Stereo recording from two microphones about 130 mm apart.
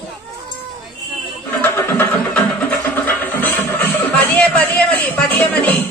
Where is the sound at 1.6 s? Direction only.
15° left (ahead or behind).